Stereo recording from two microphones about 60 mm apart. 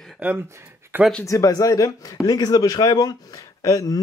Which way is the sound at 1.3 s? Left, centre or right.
Left.